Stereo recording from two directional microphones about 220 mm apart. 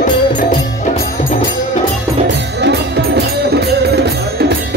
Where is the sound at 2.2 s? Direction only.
50° right (ahead or behind).